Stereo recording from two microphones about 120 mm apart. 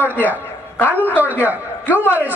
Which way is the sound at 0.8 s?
15° right (ahead or behind).